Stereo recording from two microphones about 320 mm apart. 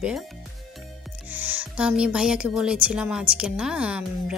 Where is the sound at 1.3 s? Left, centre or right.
Centre.